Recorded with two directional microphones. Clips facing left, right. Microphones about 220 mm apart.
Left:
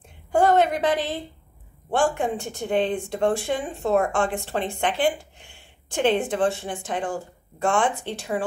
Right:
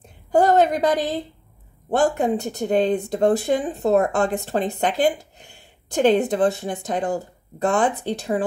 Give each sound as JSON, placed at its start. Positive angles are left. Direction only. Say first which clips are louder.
{"t": 0.3, "sound": "a woman's voice", "louder": "right 2 dB", "side_deg": -35}